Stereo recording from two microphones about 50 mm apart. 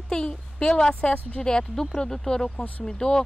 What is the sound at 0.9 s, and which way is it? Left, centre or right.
Speech, left.